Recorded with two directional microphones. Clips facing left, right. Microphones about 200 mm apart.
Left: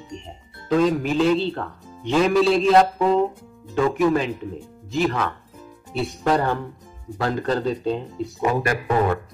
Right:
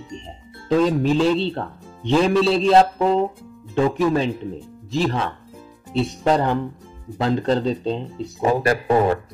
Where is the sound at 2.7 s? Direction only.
30° right (ahead or behind).